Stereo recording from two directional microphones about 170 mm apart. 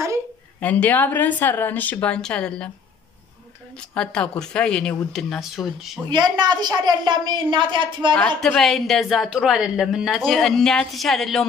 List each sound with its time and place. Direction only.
0.6 s speech: 10° left (ahead or behind)
3.9 s a woman's voice: 5° left (ahead or behind)
6.0 s a woman's voice: 25° right (ahead or behind)
8.4 s a woman's voice: 5° left (ahead or behind)